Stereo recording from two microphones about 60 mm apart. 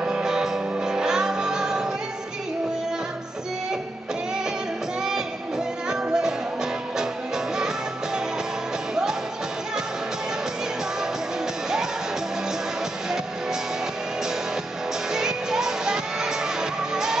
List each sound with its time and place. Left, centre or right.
0.0 s music: centre
5.9 s music: centre
15.0 s music: centre